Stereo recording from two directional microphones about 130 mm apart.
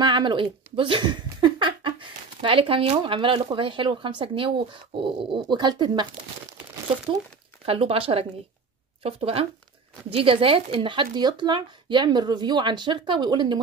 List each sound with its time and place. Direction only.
0.0 s speech: 40° right (ahead or behind)
7.6 s speech: 50° right (ahead or behind)